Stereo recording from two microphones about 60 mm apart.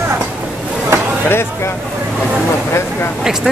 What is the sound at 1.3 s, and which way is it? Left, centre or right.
Speech, left.